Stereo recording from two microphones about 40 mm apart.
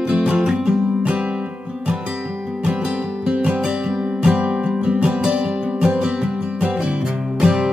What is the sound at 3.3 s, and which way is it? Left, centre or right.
Music, right.